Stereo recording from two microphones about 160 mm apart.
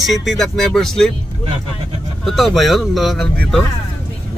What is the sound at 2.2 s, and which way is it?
Speech, centre (ahead or behind).